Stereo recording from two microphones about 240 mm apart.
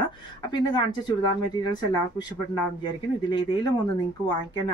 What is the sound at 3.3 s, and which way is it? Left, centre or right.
Speech, centre.